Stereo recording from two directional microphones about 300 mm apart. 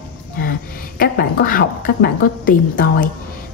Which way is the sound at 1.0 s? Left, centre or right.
Left.